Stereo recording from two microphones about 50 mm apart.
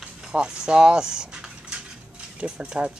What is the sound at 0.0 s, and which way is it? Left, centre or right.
Speech, centre.